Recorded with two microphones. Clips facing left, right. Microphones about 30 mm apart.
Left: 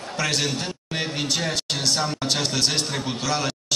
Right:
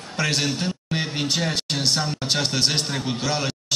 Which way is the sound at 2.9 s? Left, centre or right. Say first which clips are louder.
Right 1 dB; centre.